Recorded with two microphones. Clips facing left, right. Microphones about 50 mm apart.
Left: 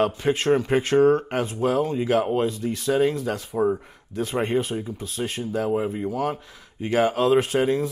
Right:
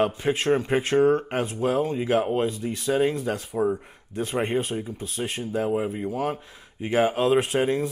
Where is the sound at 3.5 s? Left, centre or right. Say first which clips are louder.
Left 2 dB; centre.